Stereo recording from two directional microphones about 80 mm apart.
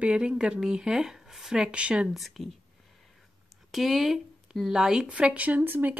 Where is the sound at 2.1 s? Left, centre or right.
Centre.